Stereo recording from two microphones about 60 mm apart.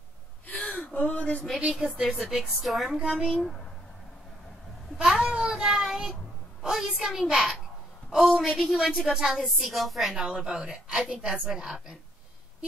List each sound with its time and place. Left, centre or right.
0.5 s gasp: left
1.7 s a woman's voice: centre
4.9 s speech: centre
5.3 s child singing: centre
6.6 s a woman's voice: centre